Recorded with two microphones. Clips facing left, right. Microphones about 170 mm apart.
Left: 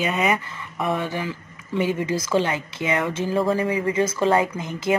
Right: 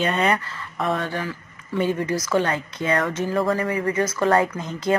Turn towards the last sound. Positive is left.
turn(degrees=20)  # may be behind; listen again after turning